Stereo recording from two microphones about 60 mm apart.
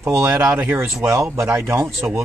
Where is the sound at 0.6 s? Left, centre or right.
Right.